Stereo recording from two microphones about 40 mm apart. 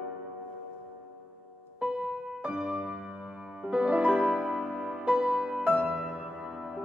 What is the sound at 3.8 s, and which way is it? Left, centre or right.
Music, right.